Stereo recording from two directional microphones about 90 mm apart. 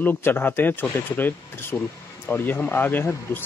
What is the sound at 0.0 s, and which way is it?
Speech, 20° left (ahead or behind).